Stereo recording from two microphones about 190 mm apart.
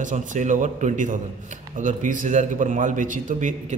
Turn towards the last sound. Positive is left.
turn(degrees=-40)  # may be behind; listen again after turning